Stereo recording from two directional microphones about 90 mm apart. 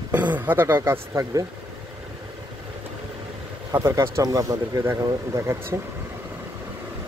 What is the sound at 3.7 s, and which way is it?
Speech, 30° right (ahead or behind).